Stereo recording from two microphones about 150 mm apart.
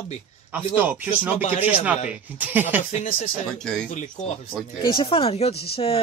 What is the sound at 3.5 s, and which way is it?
Speech, 5° left (ahead or behind).